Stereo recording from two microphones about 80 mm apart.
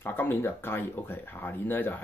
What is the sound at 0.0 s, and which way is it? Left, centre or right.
Speech, left.